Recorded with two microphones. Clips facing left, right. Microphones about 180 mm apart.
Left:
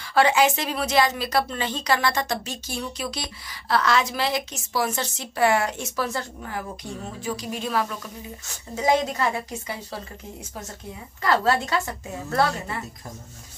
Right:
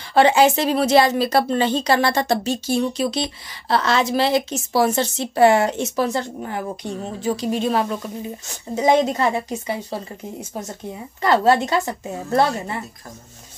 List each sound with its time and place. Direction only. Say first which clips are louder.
0.1 s a woman's voice: right 5 dB; 30° right (ahead or behind)
11.2 s a woman's voice: right 5 dB; 25° right (ahead or behind)